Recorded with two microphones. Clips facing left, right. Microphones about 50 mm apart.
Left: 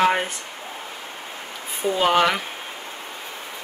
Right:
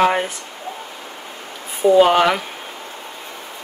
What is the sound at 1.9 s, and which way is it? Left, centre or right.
Speech, centre.